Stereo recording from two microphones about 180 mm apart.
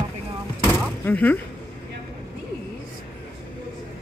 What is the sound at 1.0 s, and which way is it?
Speech, 10° left (ahead or behind).